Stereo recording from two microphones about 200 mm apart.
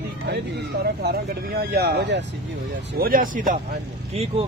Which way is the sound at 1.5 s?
50° right (ahead or behind).